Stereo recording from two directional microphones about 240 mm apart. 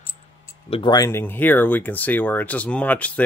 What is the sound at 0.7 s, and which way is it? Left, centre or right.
Speech, centre.